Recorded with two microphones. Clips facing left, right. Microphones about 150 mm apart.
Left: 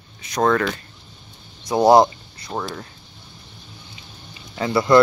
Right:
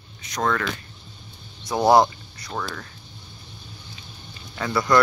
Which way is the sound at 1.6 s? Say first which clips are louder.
Left 3 dB; 20° left (ahead or behind).